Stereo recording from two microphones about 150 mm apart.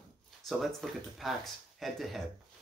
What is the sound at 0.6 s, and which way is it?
Speech, centre (ahead or behind).